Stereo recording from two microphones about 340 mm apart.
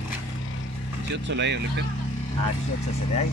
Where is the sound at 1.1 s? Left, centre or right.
Right.